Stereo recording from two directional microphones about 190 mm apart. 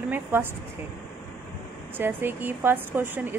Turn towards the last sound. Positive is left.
turn(degrees=-10)  # may be behind; listen again after turning